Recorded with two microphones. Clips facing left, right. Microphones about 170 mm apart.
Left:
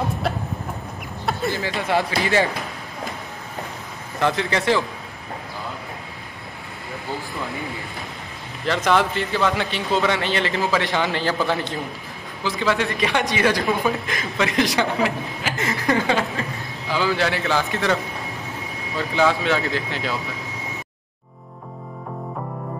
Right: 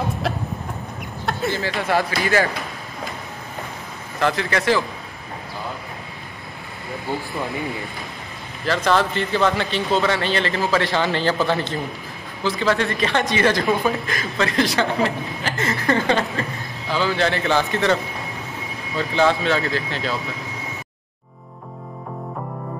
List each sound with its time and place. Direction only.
1.2 s a sound: centre (ahead or behind)
1.6 s speech: 15° left (ahead or behind)
4.2 s speech: 20° left (ahead or behind)
8.6 s speech: 15° left (ahead or behind); by 14.0 s centre (ahead or behind)
14.0 s speech: 15° left (ahead or behind)
16.0 s speech: 5° left (ahead or behind)
19.1 s speech: 10° left (ahead or behind)